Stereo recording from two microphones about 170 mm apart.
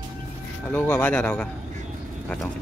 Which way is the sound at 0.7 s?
10° left (ahead or behind).